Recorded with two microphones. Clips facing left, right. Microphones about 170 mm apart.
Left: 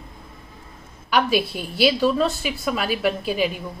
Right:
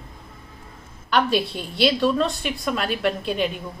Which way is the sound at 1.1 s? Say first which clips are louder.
Left 1 dB; 5° left (ahead or behind).